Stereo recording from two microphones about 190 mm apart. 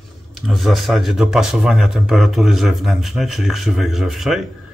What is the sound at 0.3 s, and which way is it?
A man's voice, centre (ahead or behind).